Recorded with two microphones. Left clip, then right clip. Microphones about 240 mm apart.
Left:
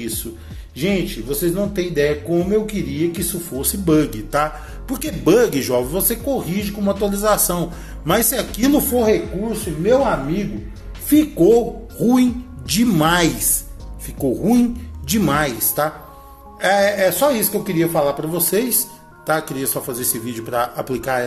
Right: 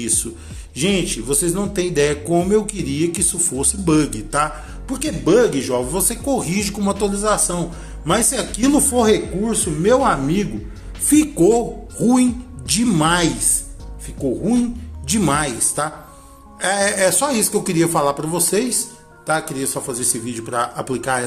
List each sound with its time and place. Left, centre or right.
0.0 s speech: centre
5.9 s speech: centre
7.1 s a woman's voice: centre
8.9 s speech: centre
11.1 s a woman's voice: centre
15.0 s a woman's voice: centre
18.4 s a woman's voice: centre